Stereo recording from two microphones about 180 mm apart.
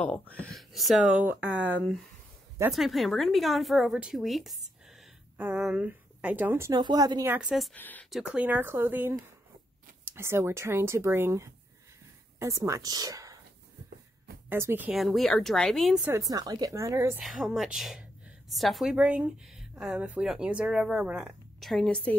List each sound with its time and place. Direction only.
0.0 s a woman's voice: 10° left (ahead or behind); by 7.3 s 20° right (ahead or behind)
7.3 s a woman's voice: centre (ahead or behind)
7.7 s speech: 10° left (ahead or behind); by 13.4 s 20° right (ahead or behind)
14.5 s a woman's voice: 10° right (ahead or behind)
16.1 s speech: 20° right (ahead or behind)
17.2 s a woman's voice: centre (ahead or behind)